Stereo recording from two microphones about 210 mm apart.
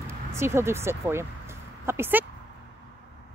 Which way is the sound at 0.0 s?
10° right (ahead or behind).